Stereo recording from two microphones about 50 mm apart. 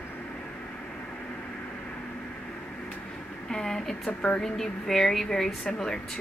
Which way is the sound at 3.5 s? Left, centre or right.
Centre.